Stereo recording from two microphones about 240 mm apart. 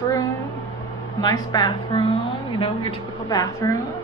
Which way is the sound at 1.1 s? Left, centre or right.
Centre.